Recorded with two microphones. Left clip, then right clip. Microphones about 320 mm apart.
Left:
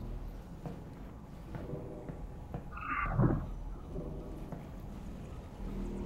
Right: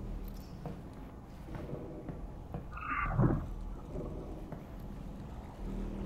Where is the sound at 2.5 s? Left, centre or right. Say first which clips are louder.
Even; centre.